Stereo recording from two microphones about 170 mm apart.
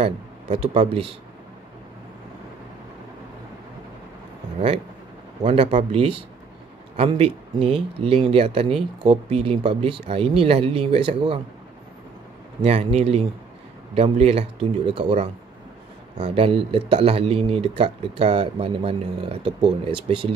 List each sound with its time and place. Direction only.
0.0 s a man's voice: 35° right (ahead or behind)
5.4 s speech: 30° right (ahead or behind)
12.6 s speech: 35° right (ahead or behind)